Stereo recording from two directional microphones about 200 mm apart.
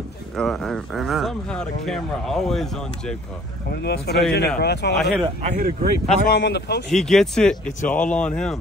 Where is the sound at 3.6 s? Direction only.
50° left (ahead or behind).